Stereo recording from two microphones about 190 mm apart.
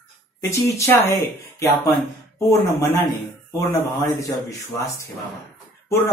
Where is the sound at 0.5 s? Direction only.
15° left (ahead or behind).